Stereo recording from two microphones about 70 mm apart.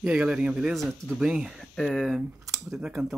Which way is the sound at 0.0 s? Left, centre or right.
Centre.